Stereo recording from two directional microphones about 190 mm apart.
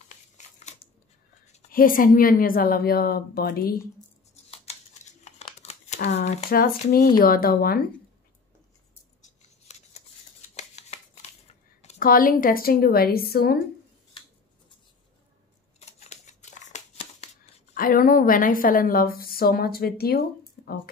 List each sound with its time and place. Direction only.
1.7 s a woman's voice: 45° left (ahead or behind)
4.5 s a sound: 35° left (ahead or behind)
6.0 s speech: 35° left (ahead or behind)
7.2 s a woman's voice: 50° left (ahead or behind)
9.2 s scissors: 35° left (ahead or behind)
10.5 s a sound: 35° left (ahead or behind)
12.0 s a woman's voice: 50° left (ahead or behind)
15.8 s scissors: 35° left (ahead or behind)
17.7 s a woman's voice: 50° left (ahead or behind)